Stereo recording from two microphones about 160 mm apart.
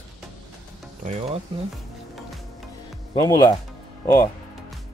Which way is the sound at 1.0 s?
45° right (ahead or behind).